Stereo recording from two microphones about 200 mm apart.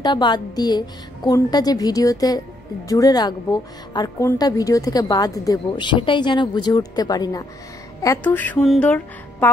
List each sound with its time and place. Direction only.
0.0 s a woman's voice: 20° left (ahead or behind)